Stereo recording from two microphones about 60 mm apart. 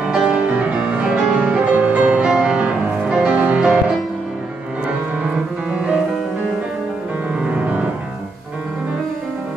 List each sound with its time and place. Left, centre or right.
0.1 s music: centre
5.2 s music: centre
7.3 s music: right